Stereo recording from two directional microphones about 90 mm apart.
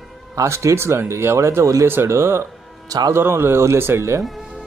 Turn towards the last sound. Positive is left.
turn(degrees=0)  # may be behind; listen again after turning